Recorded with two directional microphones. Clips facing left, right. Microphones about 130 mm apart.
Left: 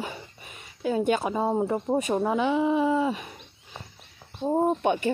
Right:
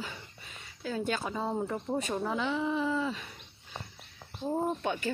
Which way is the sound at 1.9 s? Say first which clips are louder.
Left 7 dB; 45° left (ahead or behind).